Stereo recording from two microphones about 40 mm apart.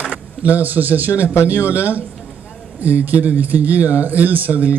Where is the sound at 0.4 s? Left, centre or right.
Right.